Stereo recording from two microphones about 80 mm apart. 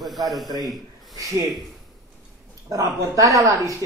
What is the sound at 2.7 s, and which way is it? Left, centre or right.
A man's voice, right.